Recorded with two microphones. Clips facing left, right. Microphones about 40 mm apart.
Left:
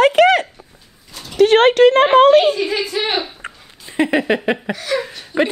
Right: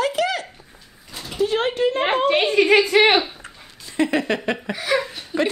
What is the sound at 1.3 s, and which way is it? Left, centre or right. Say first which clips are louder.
Speech: left 10 dB; left.